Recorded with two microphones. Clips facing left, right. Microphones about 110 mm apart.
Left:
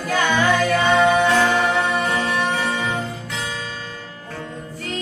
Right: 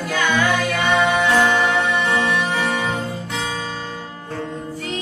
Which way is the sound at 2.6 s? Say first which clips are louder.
Right 1 dB; 30° right (ahead or behind).